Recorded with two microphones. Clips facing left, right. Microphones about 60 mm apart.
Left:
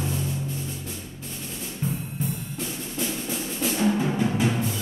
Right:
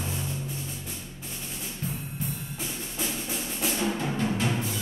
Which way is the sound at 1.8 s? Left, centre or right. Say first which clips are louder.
Left 6 dB; centre.